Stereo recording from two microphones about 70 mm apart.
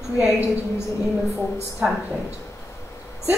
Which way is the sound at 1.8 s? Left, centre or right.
Centre.